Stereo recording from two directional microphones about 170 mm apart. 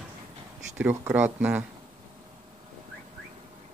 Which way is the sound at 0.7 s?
10° right (ahead or behind).